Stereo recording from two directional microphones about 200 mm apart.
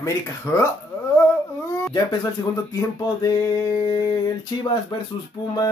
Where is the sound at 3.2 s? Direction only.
15° left (ahead or behind).